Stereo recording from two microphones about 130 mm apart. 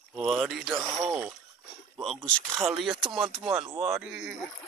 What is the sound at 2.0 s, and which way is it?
Speech, centre (ahead or behind).